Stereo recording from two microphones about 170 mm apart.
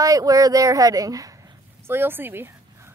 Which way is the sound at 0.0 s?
20° right (ahead or behind).